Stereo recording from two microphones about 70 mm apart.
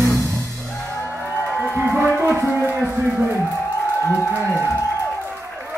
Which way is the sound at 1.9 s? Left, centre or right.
Right.